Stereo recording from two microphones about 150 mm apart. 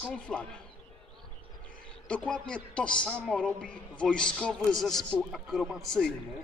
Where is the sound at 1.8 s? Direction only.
5° left (ahead or behind).